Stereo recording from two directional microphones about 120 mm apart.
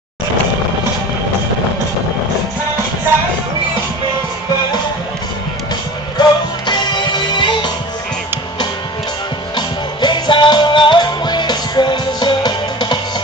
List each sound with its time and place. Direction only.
6.1 s music: 40° left (ahead or behind)
9.6 s music: 40° left (ahead or behind)